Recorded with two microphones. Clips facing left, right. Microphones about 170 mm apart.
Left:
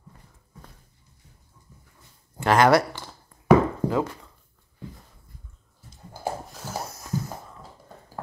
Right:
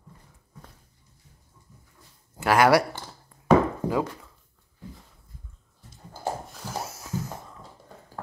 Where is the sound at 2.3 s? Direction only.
10° right (ahead or behind).